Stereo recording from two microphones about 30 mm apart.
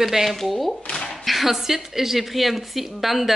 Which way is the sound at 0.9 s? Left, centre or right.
Left.